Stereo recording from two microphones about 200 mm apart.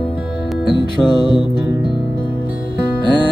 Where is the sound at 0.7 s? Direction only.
20° left (ahead or behind).